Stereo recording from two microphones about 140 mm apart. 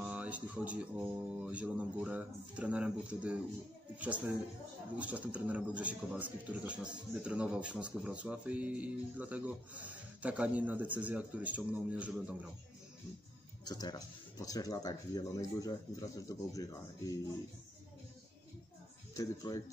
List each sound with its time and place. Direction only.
0.0 s speech: 10° right (ahead or behind)
4.9 s speech: 10° right (ahead or behind)
13.7 s speech: 30° left (ahead or behind)
19.1 s speech: 25° left (ahead or behind)